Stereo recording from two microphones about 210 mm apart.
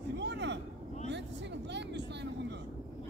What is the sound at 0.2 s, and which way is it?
Vehicle, 55° right (ahead or behind).